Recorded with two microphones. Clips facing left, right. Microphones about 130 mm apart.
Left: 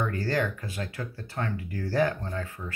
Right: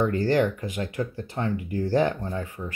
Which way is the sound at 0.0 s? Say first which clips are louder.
Right 6 dB; 20° right (ahead or behind).